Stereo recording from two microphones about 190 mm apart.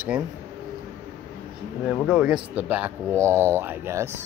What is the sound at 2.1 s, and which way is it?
Speech, 5° right (ahead or behind).